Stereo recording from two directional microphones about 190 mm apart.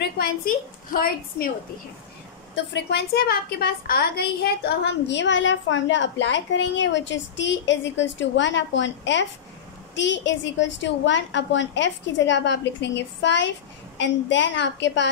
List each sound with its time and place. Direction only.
0.9 s a woman's voice: 50° left (ahead or behind)
2.5 s a woman's voice: 65° left (ahead or behind)